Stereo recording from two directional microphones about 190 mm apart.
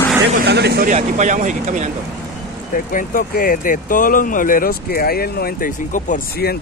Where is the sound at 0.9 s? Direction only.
40° right (ahead or behind).